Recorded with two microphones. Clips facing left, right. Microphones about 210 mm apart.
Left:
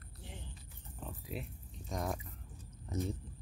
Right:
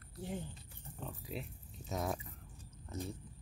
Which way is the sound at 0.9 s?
Centre (ahead or behind).